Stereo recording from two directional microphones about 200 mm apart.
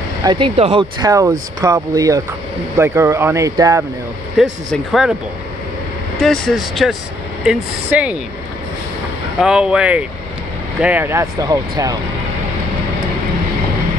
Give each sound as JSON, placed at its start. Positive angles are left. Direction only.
{"t": 0.2, "sound": "speech", "side_deg": -25}
{"t": 4.4, "sound": "speech", "side_deg": 0}
{"t": 6.1, "sound": "speech", "side_deg": 0}
{"t": 9.4, "sound": "speech", "side_deg": -5}